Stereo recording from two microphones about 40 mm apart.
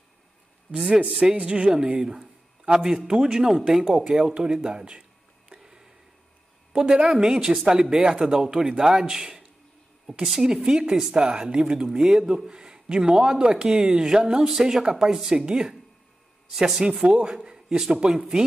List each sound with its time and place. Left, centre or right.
0.7 s a man's voice: right
1.3 s a woman's voice: right
1.8 s speech: centre
3.4 s speech: centre
3.8 s a woman's voice: centre
5.5 s a sound: centre
6.7 s a woman's voice: centre